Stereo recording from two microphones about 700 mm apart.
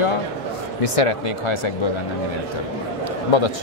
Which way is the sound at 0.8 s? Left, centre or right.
Left.